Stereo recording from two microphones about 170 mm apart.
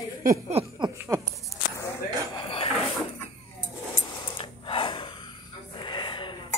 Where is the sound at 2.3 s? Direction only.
30° left (ahead or behind).